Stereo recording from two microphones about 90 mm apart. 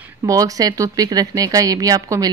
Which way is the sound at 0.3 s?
40° right (ahead or behind).